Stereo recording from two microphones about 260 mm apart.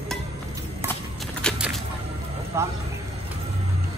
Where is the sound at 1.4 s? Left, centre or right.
Centre.